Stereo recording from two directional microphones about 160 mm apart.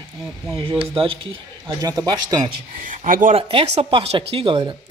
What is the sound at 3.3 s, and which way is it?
Speech, 40° right (ahead or behind).